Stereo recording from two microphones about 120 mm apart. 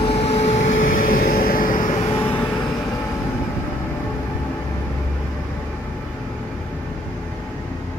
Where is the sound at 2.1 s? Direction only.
20° left (ahead or behind).